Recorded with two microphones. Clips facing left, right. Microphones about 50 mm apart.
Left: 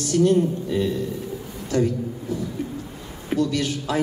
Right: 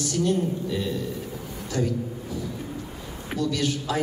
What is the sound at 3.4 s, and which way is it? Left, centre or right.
Speech, left.